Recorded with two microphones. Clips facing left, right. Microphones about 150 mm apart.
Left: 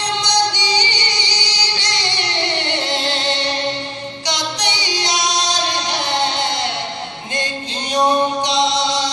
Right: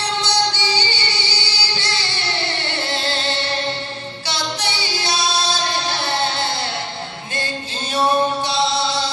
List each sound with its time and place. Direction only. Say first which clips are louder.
0.0 s music: left 2 dB; 15° left (ahead or behind)
4.3 s female singing: left 2 dB; 15° left (ahead or behind)
7.9 s music: left 2 dB; 15° left (ahead or behind)